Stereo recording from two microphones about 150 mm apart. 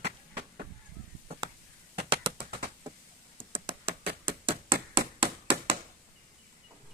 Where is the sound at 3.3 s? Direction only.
35° right (ahead or behind).